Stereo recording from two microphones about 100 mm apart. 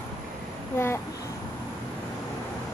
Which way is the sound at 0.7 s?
25° left (ahead or behind).